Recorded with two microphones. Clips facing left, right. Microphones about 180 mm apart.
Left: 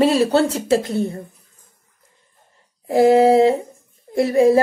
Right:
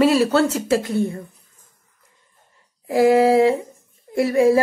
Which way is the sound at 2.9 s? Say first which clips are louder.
Left 2 dB; 30° left (ahead or behind).